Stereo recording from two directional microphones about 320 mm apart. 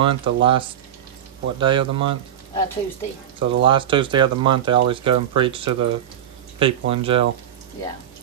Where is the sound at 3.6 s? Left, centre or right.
Centre.